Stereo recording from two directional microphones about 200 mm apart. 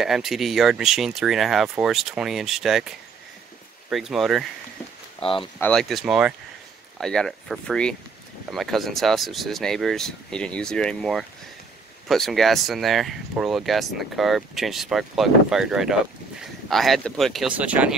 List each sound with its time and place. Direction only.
0.0 s speech: centre (ahead or behind)
3.9 s speech: centre (ahead or behind)
5.2 s speech: 25° left (ahead or behind)
5.6 s speech: 5° left (ahead or behind)